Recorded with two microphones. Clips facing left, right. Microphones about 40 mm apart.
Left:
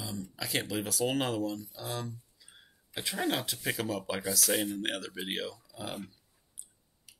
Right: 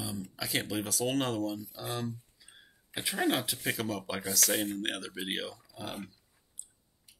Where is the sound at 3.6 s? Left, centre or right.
Centre.